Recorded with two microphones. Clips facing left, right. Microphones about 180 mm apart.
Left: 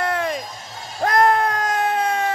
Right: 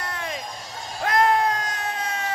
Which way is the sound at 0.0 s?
60° left (ahead or behind).